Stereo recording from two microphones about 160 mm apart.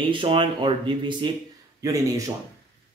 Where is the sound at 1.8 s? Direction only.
20° right (ahead or behind).